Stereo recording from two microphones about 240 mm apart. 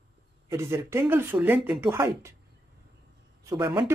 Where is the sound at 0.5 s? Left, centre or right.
Centre.